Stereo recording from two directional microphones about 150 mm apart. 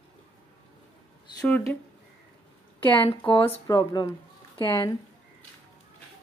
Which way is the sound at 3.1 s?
40° left (ahead or behind).